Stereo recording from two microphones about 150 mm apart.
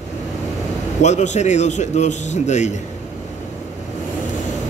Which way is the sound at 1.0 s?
50° left (ahead or behind).